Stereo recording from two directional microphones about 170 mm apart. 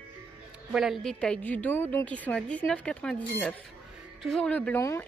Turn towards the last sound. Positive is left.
turn(degrees=15)  # may be behind; listen again after turning